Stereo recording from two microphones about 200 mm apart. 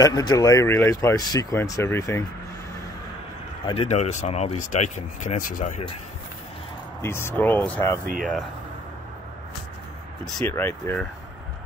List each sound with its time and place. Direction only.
0.0 s speech: 20° left (ahead or behind)
3.6 s speech: 30° left (ahead or behind)
7.0 s speech: 10° left (ahead or behind)
10.2 s speech: centre (ahead or behind)
10.5 s speech: 15° left (ahead or behind)